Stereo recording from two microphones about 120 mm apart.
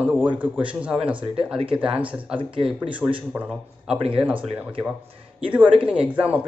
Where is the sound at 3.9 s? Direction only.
55° right (ahead or behind).